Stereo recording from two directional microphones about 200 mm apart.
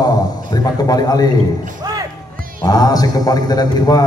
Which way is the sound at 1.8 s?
20° right (ahead or behind).